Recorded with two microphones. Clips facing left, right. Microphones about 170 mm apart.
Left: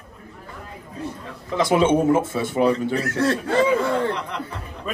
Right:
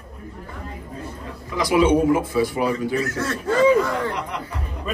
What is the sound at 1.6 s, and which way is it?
Speech, 25° left (ahead or behind).